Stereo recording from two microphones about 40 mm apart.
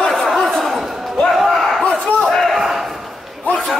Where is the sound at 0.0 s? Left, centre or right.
Centre.